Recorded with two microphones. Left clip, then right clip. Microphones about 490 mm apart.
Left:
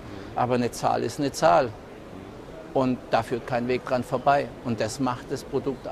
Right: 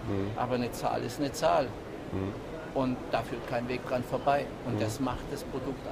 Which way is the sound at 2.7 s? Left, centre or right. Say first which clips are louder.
Left 7 dB; left.